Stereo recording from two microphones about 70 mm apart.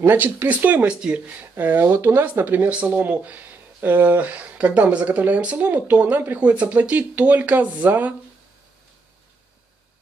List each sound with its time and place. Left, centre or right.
0.0 s speech: right
1.5 s speech: right